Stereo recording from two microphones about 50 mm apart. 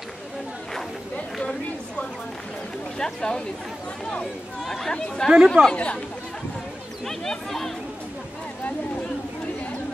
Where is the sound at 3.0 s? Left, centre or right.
Centre.